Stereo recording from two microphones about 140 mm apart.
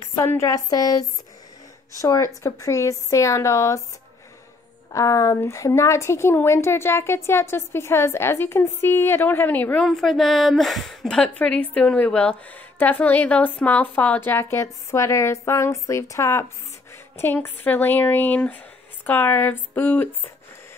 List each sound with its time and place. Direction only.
0.0 s a woman's voice: 20° left (ahead or behind)
4.9 s a woman's voice: 20° left (ahead or behind)
9.8 s a woman's voice: centre (ahead or behind)